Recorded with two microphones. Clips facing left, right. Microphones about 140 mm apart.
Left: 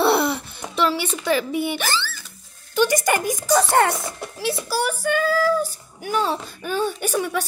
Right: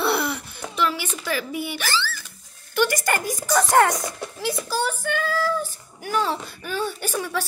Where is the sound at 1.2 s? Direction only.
25° left (ahead or behind).